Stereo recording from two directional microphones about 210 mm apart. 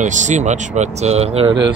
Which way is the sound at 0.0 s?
35° right (ahead or behind).